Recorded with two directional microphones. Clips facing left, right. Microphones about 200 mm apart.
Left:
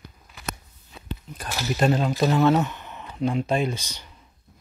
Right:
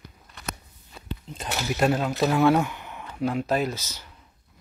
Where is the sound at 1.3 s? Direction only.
30° right (ahead or behind).